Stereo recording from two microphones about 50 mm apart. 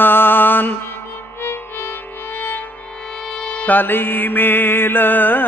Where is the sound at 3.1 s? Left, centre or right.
Centre.